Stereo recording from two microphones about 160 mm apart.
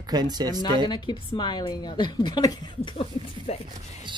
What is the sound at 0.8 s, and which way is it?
A woman's voice, 30° left (ahead or behind).